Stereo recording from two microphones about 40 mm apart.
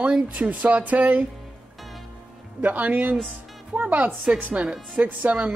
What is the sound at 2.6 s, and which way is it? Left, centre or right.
Speech, right.